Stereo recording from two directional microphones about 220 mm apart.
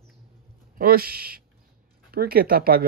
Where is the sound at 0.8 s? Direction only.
45° right (ahead or behind).